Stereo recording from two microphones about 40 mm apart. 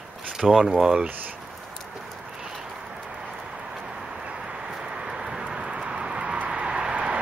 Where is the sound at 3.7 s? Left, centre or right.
Centre.